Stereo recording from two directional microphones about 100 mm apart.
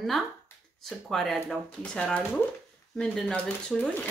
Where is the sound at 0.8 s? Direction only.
Centre (ahead or behind).